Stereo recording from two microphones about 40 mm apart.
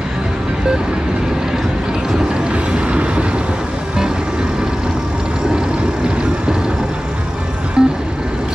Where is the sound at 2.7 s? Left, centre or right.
Right.